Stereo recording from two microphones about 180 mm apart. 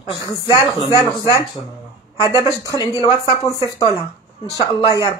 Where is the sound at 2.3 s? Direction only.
20° left (ahead or behind).